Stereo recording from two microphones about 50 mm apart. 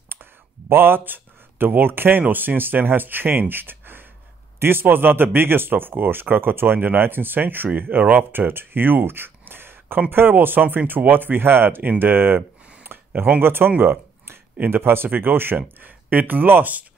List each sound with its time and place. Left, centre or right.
0.1 s speech: right
12.0 s a sound: right
13.4 s speech: right